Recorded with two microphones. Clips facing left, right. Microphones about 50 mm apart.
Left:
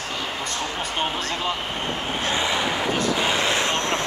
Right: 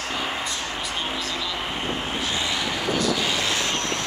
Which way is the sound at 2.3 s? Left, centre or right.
Left.